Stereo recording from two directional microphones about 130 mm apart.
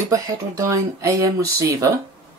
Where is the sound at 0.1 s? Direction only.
25° right (ahead or behind).